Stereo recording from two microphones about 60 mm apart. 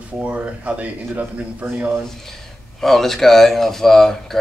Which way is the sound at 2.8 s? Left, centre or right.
Centre.